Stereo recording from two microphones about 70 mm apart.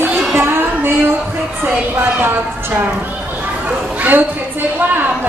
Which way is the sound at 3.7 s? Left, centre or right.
Right.